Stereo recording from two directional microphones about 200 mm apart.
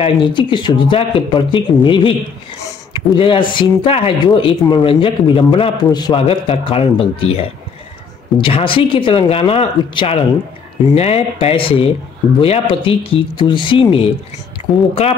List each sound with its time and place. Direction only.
0.0 s speech: 25° left (ahead or behind)
2.6 s a sound: 25° left (ahead or behind)
3.5 s speech: 30° left (ahead or behind)